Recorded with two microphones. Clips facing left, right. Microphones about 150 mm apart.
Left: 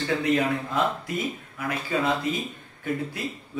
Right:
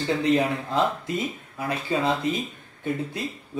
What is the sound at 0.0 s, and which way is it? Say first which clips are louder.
Speech: right 2 dB; 30° right (ahead or behind).